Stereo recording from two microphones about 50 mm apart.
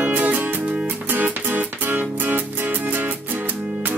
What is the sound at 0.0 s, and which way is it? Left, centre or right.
Music, right.